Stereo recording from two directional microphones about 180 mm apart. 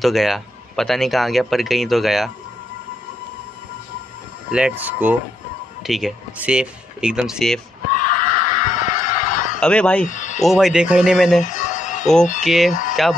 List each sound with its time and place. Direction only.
0.0 s speech: centre (ahead or behind)
4.5 s speech: 5° right (ahead or behind)
7.9 s screaming: 50° left (ahead or behind)
9.6 s speech: 5° left (ahead or behind)
10.0 s speech: 45° left (ahead or behind)
10.4 s speech: centre (ahead or behind)
11.4 s music: 45° left (ahead or behind)
12.4 s speech: centre (ahead or behind)